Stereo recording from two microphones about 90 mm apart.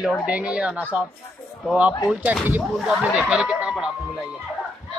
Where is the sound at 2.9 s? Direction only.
5° right (ahead or behind).